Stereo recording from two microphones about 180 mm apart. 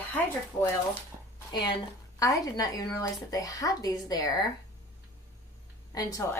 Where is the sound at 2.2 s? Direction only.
20° left (ahead or behind).